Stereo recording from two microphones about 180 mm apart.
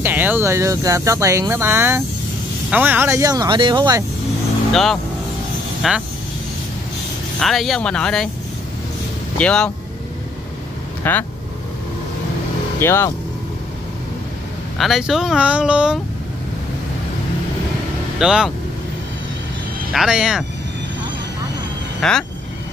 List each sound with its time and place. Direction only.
0.0 s speech: 10° right (ahead or behind)
5.8 s speech: 5° right (ahead or behind)
7.3 s speech: centre (ahead or behind)
9.4 s speech: 5° left (ahead or behind)
11.0 s speech: 10° left (ahead or behind)
12.8 s speech: 15° left (ahead or behind)
14.8 s speech: centre (ahead or behind)
18.2 s speech: 5° right (ahead or behind)
19.9 s speech: centre (ahead or behind)
22.0 s speech: 5° left (ahead or behind)